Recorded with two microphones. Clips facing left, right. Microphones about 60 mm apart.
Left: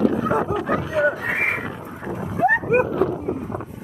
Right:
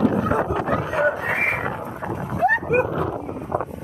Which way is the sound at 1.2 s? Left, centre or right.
Centre.